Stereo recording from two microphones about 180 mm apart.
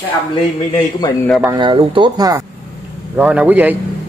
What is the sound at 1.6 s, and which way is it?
Speech, 30° right (ahead or behind).